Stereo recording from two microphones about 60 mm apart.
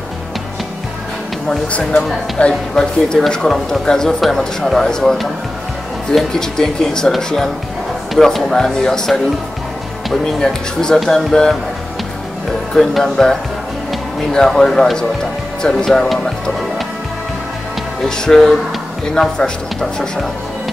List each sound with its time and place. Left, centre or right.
1.7 s speech: left
6.1 s speech: centre
10.2 s speech: centre
12.7 s speech: centre
18.0 s speech: centre